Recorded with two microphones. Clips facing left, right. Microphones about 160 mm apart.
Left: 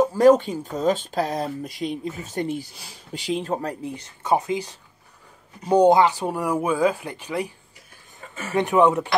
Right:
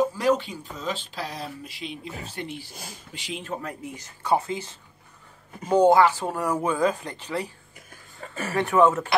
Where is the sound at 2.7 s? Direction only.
45° right (ahead or behind).